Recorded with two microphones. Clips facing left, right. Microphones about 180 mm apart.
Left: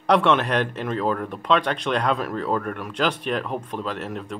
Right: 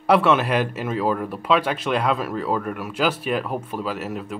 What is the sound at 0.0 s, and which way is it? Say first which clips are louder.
Speech: right 1 dB; 5° right (ahead or behind).